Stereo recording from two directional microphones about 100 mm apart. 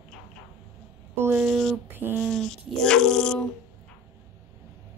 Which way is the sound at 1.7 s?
20° right (ahead or behind).